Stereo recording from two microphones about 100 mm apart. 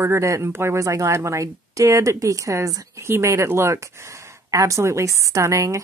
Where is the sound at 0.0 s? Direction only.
30° right (ahead or behind).